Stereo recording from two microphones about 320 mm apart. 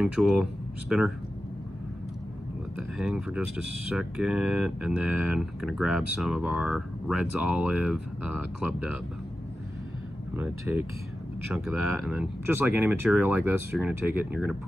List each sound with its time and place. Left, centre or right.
0.0 s speech: centre
3.0 s speech: centre
10.3 s speech: centre
11.7 s speech: left
12.1 s speech: centre